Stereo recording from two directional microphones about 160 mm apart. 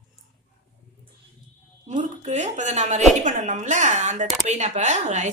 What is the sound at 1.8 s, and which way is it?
Speech, 50° right (ahead or behind).